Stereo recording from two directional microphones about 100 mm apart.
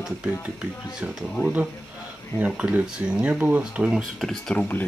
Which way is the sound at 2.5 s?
10° right (ahead or behind).